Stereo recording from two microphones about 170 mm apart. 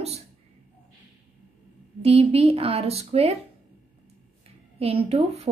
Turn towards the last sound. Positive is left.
turn(degrees=-35)  # may be behind; listen again after turning